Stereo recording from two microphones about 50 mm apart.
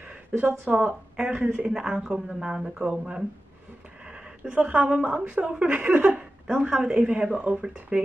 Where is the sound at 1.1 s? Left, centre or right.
Centre.